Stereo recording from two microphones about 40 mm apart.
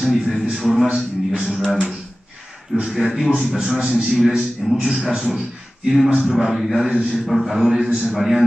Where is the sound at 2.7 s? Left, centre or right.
Centre.